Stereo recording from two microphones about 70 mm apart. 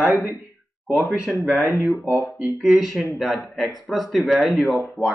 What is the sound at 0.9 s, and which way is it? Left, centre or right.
Speech, right.